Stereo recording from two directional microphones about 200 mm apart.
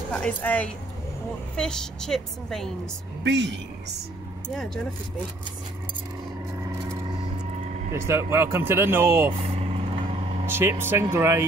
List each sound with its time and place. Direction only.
0.1 s a woman's voice: 5° left (ahead or behind)
3.3 s speech: 60° right (ahead or behind)
7.9 s speech: 15° right (ahead or behind)
10.4 s speech: 10° right (ahead or behind)